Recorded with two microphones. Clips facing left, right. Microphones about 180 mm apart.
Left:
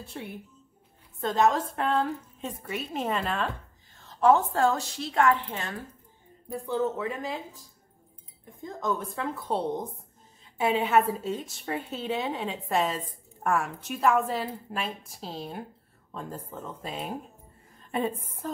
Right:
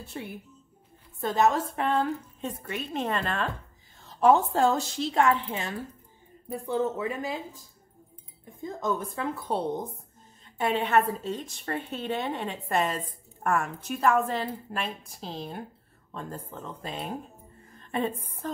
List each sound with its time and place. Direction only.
0.2 s a woman's voice: 5° right (ahead or behind)
4.2 s speech: 20° right (ahead or behind)
7.0 s a woman's voice: 5° right (ahead or behind)
8.6 s a woman's voice: 5° right (ahead or behind)